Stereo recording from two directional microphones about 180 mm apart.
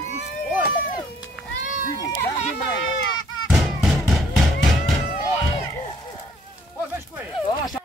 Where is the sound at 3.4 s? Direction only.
Centre (ahead or behind).